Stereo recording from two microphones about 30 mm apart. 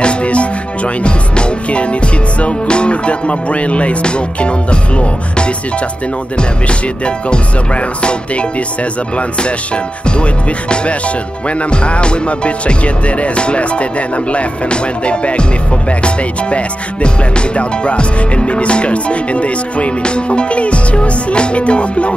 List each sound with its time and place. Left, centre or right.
0.0 s music: left
10.0 s music: left